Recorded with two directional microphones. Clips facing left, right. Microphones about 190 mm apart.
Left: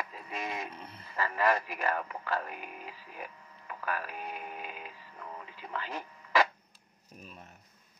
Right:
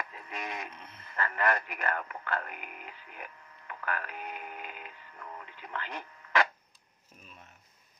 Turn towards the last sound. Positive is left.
turn(degrees=40)  # may be behind; listen again after turning